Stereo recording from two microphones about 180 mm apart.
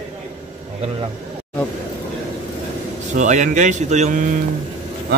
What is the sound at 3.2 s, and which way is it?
Speech, 45° right (ahead or behind).